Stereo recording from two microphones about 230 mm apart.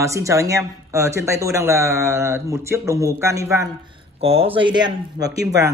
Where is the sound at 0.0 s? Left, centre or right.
Centre.